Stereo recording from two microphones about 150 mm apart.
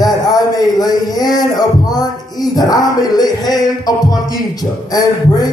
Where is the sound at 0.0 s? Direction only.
25° left (ahead or behind).